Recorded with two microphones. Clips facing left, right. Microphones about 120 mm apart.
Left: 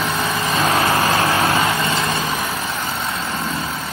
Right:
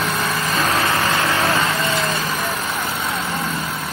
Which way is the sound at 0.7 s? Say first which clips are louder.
Left 3 dB; 30° left (ahead or behind).